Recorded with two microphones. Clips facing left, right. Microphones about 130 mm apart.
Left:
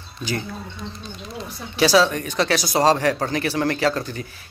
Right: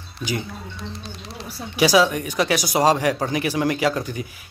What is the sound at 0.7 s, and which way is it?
Speech, 85° right.